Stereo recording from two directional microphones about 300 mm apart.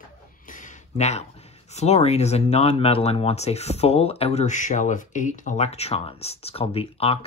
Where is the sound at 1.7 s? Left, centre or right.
Left.